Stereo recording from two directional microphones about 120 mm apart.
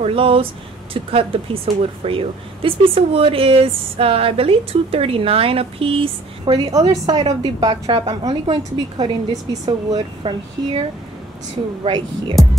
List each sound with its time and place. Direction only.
0.0 s speech: 50° right (ahead or behind)
11.8 s speech: 45° right (ahead or behind)